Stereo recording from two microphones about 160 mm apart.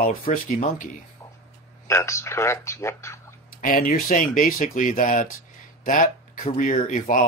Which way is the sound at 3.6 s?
60° left (ahead or behind).